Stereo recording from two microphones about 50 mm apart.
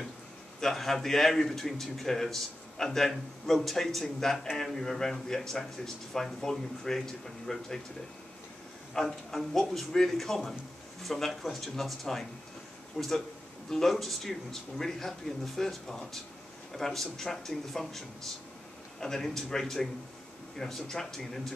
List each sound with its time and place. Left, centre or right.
0.6 s a man's voice: centre
8.9 s a man's voice: centre